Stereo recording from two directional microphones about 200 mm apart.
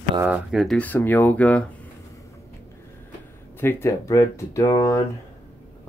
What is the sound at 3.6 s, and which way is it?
Speech, 10° left (ahead or behind).